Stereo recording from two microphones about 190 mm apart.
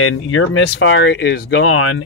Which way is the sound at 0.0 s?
90° left.